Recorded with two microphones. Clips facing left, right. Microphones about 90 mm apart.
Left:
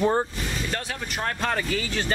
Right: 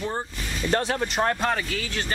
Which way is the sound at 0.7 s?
35° right (ahead or behind).